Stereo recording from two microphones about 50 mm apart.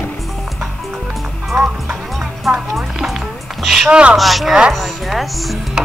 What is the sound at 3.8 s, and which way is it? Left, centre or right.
Speech, centre.